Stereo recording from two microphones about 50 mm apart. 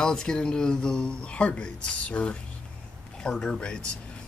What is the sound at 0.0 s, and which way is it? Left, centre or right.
Speech, centre.